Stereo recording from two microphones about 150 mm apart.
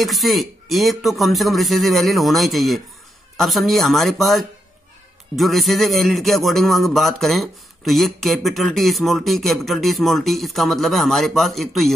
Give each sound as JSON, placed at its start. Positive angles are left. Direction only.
{"t": 0.0, "sound": "speech", "side_deg": 0}